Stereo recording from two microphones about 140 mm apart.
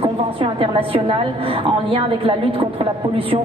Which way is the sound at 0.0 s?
40° right (ahead or behind).